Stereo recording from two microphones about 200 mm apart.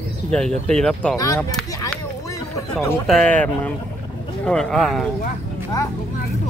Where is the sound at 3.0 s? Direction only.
5° left (ahead or behind).